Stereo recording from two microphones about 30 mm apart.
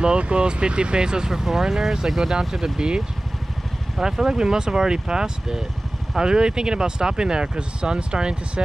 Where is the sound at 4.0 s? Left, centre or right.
Right.